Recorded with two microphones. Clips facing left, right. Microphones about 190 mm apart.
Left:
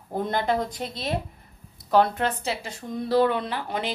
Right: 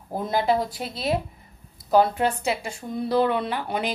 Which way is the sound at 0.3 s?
5° right (ahead or behind).